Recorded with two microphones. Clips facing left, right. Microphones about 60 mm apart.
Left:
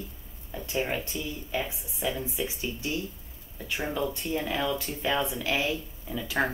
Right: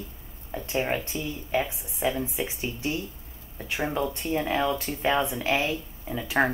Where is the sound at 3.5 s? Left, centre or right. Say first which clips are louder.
Right 3 dB; right.